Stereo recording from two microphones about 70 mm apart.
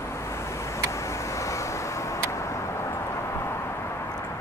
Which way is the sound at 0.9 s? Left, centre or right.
Left.